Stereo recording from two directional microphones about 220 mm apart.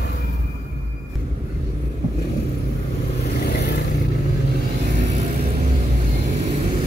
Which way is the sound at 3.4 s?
45° left (ahead or behind).